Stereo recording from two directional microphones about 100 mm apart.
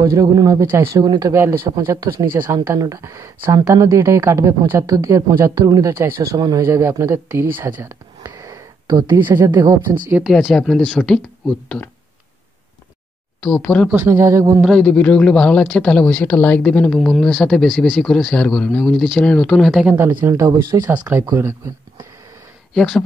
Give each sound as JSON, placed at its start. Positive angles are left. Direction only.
{"t": 0.0, "sound": "speech", "side_deg": -35}
{"t": 1.0, "sound": "speech", "side_deg": -45}
{"t": 1.3, "sound": "speech", "side_deg": -25}
{"t": 7.6, "sound": "a sound", "side_deg": -30}
{"t": 9.5, "sound": "speech", "side_deg": -40}
{"t": 10.3, "sound": "speech", "side_deg": 5}
{"t": 13.4, "sound": "speech", "side_deg": 10}
{"t": 13.8, "sound": "speech", "side_deg": -15}
{"t": 14.1, "sound": "speech", "side_deg": -30}
{"t": 14.7, "sound": "speech", "side_deg": 10}
{"t": 17.6, "sound": "speech", "side_deg": -5}
{"t": 18.0, "sound": "speech", "side_deg": 5}
{"t": 19.9, "sound": "speech", "side_deg": -20}
{"t": 22.8, "sound": "speech", "side_deg": 5}